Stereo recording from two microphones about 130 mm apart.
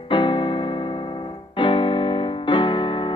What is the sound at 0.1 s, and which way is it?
Keyboard, 40° left (ahead or behind).